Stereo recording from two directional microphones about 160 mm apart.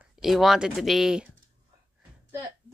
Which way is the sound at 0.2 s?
Centre (ahead or behind).